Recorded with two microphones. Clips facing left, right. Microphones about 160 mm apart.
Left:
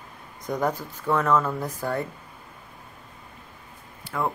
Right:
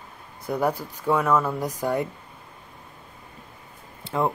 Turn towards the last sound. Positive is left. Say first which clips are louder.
# right 4 dB
turn(degrees=-20)  # may be behind; listen again after turning